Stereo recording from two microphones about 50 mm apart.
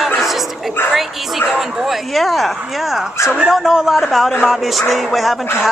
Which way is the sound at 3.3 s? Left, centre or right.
Centre.